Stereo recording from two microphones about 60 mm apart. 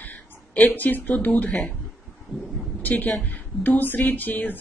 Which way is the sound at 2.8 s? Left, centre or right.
Left.